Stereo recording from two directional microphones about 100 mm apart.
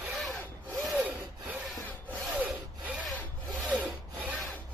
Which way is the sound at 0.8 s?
5° right (ahead or behind).